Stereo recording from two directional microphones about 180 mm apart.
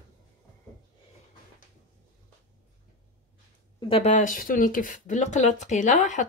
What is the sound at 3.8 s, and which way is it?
Speech, 35° left (ahead or behind).